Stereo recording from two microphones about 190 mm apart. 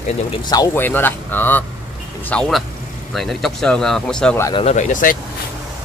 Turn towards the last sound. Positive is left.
turn(degrees=40)  # may be behind; listen again after turning